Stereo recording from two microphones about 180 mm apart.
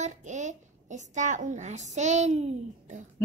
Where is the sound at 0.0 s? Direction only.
40° right (ahead or behind).